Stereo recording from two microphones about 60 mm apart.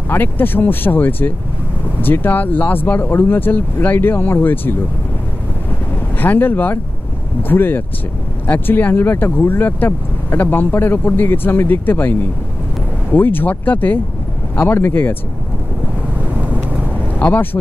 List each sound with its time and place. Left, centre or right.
0.1 s speech: left
6.1 s speech: left
14.6 s speech: left
16.3 s vehicle: right
17.2 s speech: left